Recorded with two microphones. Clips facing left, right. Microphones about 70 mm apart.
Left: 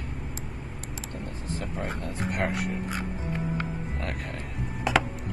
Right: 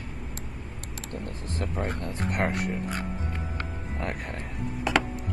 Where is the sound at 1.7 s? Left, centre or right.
Centre.